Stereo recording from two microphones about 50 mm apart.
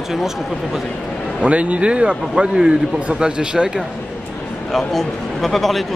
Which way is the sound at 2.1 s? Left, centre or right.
Centre.